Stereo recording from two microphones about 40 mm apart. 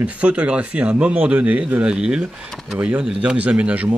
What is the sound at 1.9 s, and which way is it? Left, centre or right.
Speech, right.